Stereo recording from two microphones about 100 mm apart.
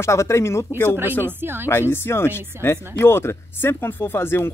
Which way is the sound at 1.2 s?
20° right (ahead or behind).